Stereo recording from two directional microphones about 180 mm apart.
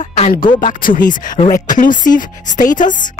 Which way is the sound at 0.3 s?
45° left (ahead or behind).